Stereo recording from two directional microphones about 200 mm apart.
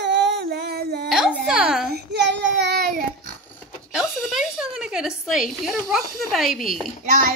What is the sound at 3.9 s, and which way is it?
A woman's voice, 5° right (ahead or behind).